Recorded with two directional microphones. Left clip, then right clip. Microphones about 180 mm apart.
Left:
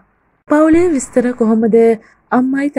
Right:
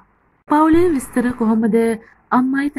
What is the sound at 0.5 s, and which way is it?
A woman's voice, 20° left (ahead or behind).